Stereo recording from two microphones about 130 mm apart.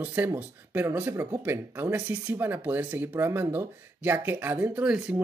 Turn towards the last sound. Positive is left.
turn(degrees=-5)  # may be behind; listen again after turning